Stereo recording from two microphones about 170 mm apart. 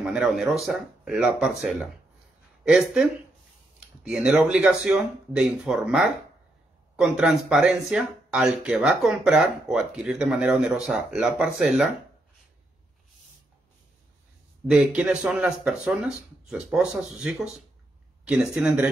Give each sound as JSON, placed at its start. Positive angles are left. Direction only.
{"t": 0.0, "sound": "speech", "side_deg": -5}
{"t": 2.6, "sound": "speech", "side_deg": -5}
{"t": 14.7, "sound": "speech", "side_deg": -5}